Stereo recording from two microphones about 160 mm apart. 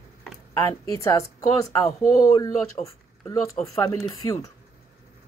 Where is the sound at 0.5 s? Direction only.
20° left (ahead or behind).